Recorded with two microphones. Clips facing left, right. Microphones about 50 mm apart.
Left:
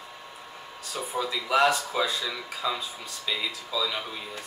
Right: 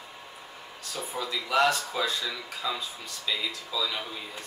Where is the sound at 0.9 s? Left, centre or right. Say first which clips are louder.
Left 3 dB; centre.